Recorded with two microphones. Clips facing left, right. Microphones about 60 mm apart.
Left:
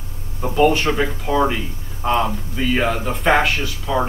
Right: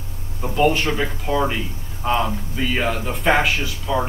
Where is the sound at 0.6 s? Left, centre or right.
Centre.